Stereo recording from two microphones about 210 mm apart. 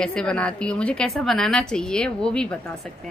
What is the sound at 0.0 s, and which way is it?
A woman's voice, 5° left (ahead or behind).